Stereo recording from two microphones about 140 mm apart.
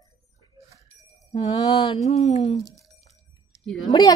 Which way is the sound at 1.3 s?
45° left (ahead or behind).